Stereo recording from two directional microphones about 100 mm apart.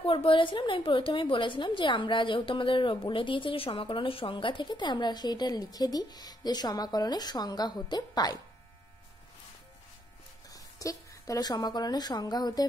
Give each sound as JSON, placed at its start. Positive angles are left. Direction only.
{"t": 0.0, "sound": "a woman's voice", "side_deg": 60}
{"t": 10.5, "sound": "speech", "side_deg": 35}